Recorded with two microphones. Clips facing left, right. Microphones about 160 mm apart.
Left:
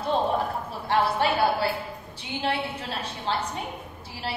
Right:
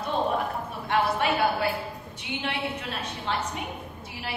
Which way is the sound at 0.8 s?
30° left (ahead or behind).